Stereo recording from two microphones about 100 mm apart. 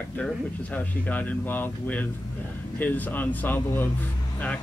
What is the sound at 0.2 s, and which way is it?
Speech, 15° left (ahead or behind).